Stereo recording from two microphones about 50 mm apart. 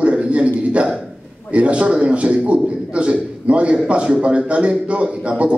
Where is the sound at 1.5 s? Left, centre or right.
Right.